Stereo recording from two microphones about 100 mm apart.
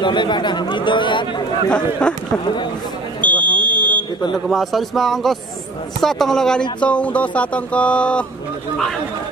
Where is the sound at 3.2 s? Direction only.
15° left (ahead or behind).